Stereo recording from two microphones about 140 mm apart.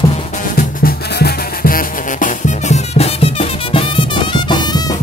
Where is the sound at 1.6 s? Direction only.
80° left.